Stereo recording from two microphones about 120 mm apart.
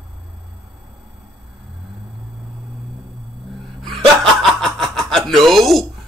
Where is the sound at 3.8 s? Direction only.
Centre (ahead or behind).